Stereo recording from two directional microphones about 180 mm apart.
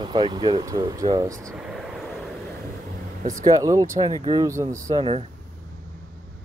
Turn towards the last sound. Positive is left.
turn(degrees=-30)  # may be behind; listen again after turning